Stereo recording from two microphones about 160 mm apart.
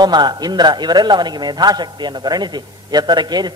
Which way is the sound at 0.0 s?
25° right (ahead or behind).